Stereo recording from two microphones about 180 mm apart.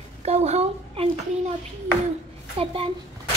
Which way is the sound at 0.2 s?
35° right (ahead or behind).